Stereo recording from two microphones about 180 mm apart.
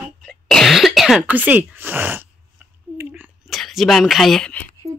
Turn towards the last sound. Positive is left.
turn(degrees=5)  # may be behind; listen again after turning